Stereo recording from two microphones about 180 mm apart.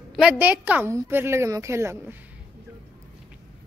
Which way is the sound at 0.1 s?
5° right (ahead or behind).